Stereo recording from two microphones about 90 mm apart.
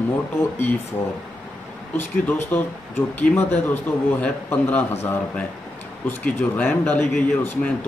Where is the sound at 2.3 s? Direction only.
25° left (ahead or behind).